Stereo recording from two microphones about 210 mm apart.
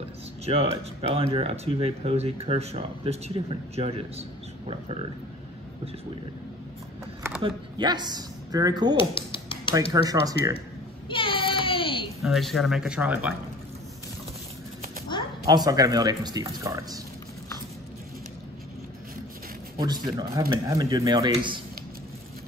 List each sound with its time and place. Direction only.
0.5 s speech: 30° right (ahead or behind)
7.4 s speech: 20° right (ahead or behind)
8.9 s dishes: 25° left (ahead or behind)
10.0 s speech: 15° right (ahead or behind)
11.1 s a sound: 25° left (ahead or behind)
12.2 s speech: centre (ahead or behind)
15.1 s a sound: 20° left (ahead or behind)
15.4 s speech: 20° right (ahead or behind)
19.8 s speech: 20° right (ahead or behind)